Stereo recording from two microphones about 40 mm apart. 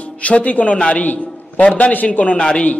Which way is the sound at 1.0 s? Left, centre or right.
Left.